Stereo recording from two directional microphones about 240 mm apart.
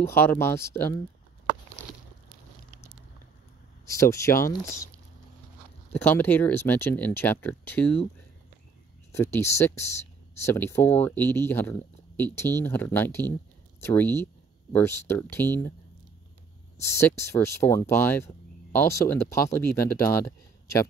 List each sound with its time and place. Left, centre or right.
0.0 s speech: centre
3.8 s speech: centre
5.9 s speech: centre
9.1 s speech: centre
16.8 s speech: centre